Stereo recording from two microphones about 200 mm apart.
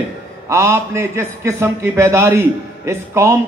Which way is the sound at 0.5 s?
15° right (ahead or behind).